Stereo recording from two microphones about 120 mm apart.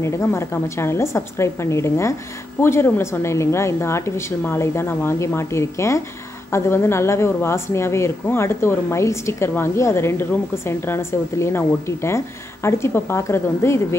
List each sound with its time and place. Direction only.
0.0 s a woman's voice: 25° left (ahead or behind)